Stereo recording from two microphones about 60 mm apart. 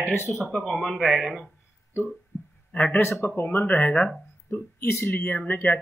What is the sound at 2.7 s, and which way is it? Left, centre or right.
Speech, left.